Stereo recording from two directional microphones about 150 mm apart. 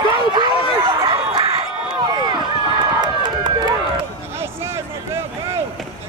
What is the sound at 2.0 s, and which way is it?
Run, 30° right (ahead or behind).